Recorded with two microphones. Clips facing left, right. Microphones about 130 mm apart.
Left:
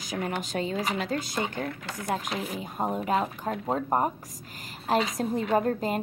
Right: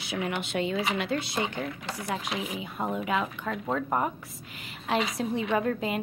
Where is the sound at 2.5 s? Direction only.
40° left (ahead or behind).